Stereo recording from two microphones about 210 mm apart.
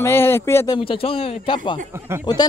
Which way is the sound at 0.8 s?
25° left (ahead or behind).